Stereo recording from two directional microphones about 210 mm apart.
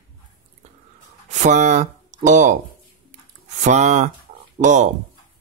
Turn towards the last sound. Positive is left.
turn(degrees=-35)  # may be behind; listen again after turning